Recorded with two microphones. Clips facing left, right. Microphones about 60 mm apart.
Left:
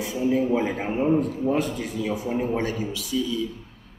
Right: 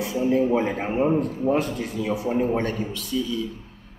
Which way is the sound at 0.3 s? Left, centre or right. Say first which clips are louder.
Right 1 dB; centre.